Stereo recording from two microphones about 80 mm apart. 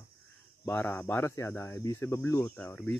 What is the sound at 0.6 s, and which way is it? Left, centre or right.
Speech, left.